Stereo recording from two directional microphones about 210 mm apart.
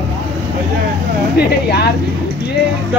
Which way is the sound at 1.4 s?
50° left (ahead or behind).